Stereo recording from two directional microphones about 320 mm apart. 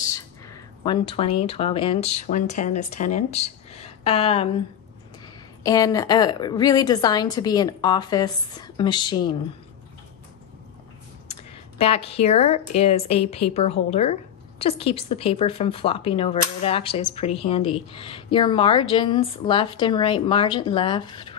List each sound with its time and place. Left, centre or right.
0.0 s speech: centre
5.6 s speech: centre
11.8 s a woman's voice: centre